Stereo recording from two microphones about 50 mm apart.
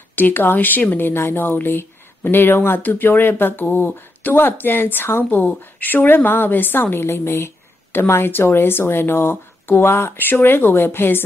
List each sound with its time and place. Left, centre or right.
0.1 s a woman's voice: left